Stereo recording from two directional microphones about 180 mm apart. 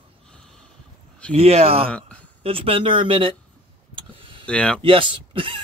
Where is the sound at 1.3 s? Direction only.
35° right (ahead or behind).